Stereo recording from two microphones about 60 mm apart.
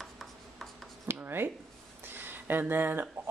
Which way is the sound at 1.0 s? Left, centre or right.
Right.